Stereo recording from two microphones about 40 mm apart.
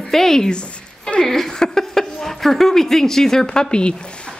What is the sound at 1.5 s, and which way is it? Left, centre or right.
A woman's voice, centre.